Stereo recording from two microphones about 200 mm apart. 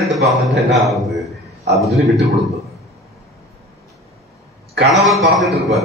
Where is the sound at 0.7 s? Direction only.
Centre (ahead or behind).